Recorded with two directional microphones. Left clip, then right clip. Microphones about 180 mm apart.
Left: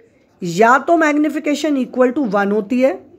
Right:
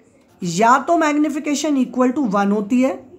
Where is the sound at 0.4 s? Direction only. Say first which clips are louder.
Left 2 dB; 20° left (ahead or behind).